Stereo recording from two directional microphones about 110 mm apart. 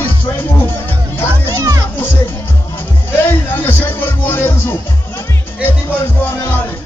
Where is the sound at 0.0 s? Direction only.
20° left (ahead or behind).